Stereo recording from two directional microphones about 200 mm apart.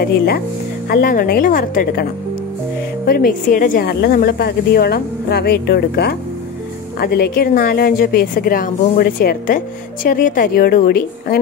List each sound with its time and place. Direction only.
0.0 s a woman's voice: 50° left (ahead or behind)
3.1 s a woman's voice: 45° left (ahead or behind)